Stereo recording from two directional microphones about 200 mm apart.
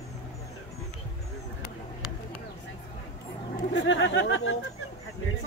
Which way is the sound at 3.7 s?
70° left (ahead or behind).